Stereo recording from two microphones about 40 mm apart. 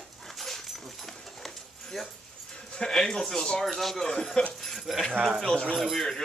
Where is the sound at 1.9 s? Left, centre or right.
Centre.